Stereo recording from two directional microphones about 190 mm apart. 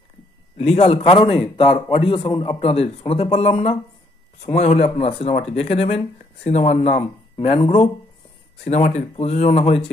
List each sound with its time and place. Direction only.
0.6 s a man's voice: 35° left (ahead or behind)